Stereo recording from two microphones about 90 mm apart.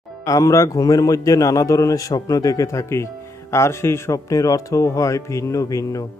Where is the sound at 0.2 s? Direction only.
40° left (ahead or behind).